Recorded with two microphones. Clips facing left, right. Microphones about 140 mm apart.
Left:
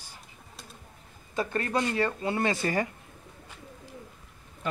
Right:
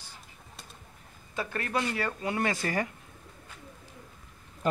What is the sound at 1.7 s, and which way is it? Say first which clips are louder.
Speech: left 2 dB; 20° left (ahead or behind).